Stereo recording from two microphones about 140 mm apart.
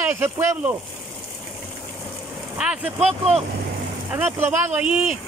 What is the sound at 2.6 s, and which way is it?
Speech, 10° right (ahead or behind).